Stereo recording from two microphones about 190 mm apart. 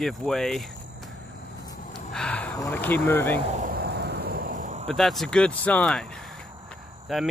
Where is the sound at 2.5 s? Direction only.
10° left (ahead or behind).